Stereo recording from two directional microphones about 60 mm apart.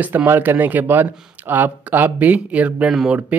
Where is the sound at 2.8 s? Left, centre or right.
Centre.